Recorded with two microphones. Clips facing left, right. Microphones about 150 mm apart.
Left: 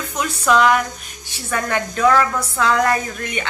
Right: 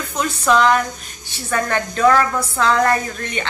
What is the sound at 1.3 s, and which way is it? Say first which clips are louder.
A woman's voice: right 1 dB; 10° left (ahead or behind).